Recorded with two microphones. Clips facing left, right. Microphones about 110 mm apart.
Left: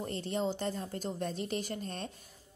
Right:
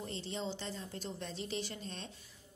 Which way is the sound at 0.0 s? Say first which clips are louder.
Left 7 dB; 50° left (ahead or behind).